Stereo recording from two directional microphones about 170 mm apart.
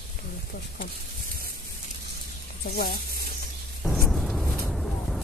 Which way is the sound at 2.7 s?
60° left (ahead or behind).